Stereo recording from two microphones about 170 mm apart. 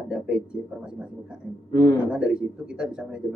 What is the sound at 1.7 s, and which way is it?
Speech, 20° left (ahead or behind).